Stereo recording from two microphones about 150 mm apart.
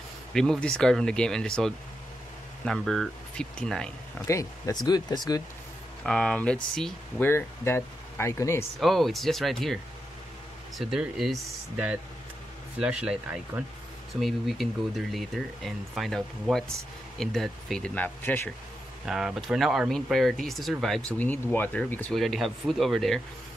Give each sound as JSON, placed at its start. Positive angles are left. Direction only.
{"t": 0.3, "sound": "speech", "side_deg": 5}
{"t": 4.3, "sound": "speech", "side_deg": 20}
{"t": 6.0, "sound": "speech", "side_deg": 5}
{"t": 7.2, "sound": "speech", "side_deg": 15}
{"t": 8.7, "sound": "speech", "side_deg": 0}
{"t": 10.8, "sound": "speech", "side_deg": 0}
{"t": 12.7, "sound": "speech", "side_deg": -5}
{"t": 19.0, "sound": "speech", "side_deg": -5}
{"t": 22.1, "sound": "speech", "side_deg": 0}